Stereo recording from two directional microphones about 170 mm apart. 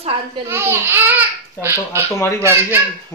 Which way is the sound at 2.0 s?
15° left (ahead or behind).